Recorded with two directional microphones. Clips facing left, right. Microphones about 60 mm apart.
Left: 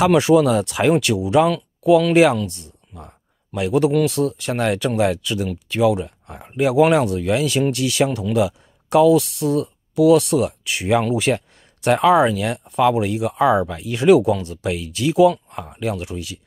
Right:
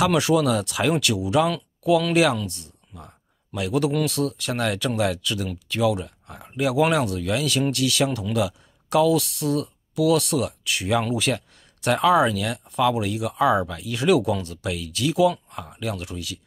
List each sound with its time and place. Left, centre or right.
0.0 s speech: left